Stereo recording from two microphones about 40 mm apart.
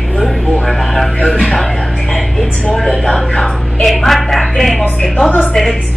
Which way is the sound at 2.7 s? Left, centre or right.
Centre.